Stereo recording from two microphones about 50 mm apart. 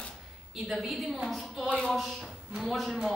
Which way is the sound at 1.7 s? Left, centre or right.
Left.